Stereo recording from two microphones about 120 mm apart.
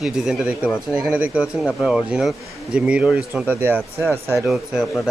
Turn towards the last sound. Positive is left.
turn(degrees=0)  # may be behind; listen again after turning